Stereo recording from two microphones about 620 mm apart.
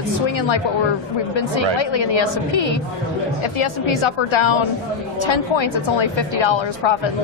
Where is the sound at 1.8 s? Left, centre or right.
Left.